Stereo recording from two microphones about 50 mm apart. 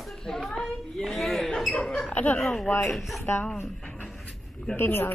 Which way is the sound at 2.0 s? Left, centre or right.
Left.